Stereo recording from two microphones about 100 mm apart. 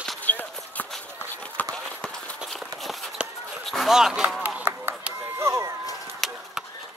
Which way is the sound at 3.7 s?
Centre (ahead or behind).